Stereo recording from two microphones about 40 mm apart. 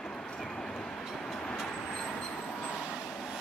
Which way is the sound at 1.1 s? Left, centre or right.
Centre.